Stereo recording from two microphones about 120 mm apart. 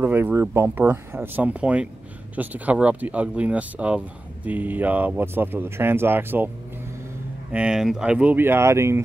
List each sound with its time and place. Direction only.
0.0 s speech: 20° right (ahead or behind)
7.5 s speech: 5° right (ahead or behind); by 9.0 s 25° right (ahead or behind)